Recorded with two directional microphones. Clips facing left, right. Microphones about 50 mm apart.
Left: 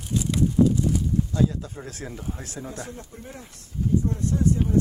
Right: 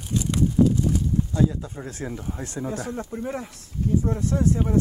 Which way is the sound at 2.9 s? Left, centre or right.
Right.